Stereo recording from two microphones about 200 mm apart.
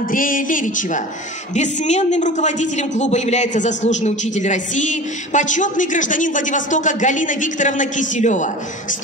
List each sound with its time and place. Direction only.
0.1 s a man's voice: 45° left (ahead or behind)